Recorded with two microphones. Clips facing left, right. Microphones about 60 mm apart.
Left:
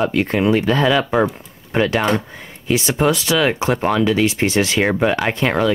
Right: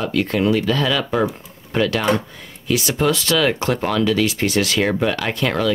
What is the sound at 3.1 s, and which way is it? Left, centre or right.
Speech, centre.